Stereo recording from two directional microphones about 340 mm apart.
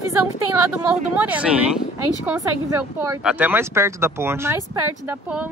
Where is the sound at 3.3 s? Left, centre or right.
Centre.